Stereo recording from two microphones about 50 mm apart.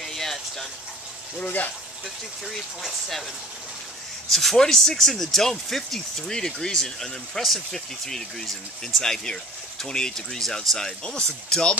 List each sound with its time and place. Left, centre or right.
0.0 s a sound: centre
1.4 s speech: left
4.3 s speech: centre